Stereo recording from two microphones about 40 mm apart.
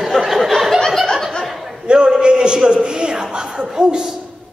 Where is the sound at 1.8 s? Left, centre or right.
Right.